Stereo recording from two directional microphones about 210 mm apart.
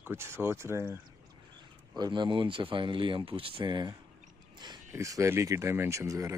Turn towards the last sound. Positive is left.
turn(degrees=-15)  # may be behind; listen again after turning